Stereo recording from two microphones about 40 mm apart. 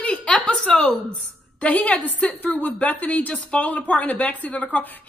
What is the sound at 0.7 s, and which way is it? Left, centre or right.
A woman's voice, left.